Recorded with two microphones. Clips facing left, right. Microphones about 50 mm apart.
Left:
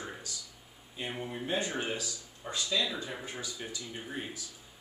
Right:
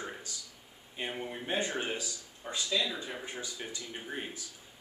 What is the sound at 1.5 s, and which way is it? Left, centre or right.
Speech, right.